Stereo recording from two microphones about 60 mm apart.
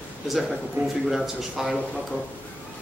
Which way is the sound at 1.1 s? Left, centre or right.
Centre.